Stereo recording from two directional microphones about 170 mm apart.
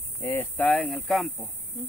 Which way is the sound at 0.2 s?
15° left (ahead or behind).